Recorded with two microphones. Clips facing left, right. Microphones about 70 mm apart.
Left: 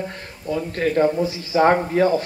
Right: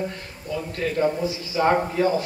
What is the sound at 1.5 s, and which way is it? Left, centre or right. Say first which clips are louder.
Speech: left 4 dB; left.